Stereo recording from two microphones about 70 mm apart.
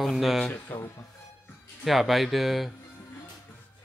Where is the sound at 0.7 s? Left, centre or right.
Left.